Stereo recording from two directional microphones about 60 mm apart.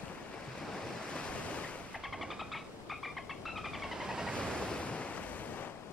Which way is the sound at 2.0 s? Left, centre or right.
Centre.